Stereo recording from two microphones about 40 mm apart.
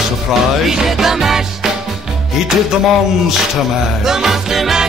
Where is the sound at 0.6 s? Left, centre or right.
Centre.